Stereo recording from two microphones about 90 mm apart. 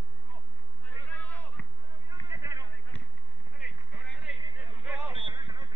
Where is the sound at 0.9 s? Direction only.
20° left (ahead or behind).